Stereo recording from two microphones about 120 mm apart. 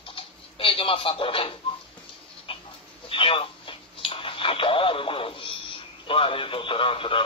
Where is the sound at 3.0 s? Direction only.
50° left (ahead or behind).